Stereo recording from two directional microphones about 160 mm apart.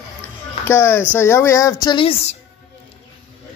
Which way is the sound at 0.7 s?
15° left (ahead or behind).